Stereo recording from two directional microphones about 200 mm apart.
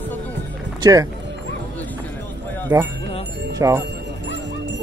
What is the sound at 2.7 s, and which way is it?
Speech, 15° right (ahead or behind).